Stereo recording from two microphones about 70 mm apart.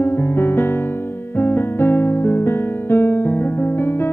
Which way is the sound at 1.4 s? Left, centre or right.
Left.